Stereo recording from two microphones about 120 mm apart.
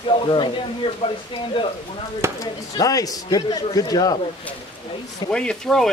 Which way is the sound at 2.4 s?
30° left (ahead or behind).